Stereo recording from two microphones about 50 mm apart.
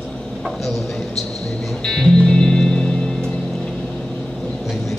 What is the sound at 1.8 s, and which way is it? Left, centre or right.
Music, centre.